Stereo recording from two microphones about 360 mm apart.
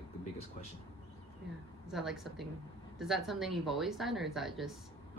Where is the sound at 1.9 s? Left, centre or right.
Centre.